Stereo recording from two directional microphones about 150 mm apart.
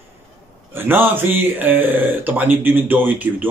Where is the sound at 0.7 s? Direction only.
15° right (ahead or behind).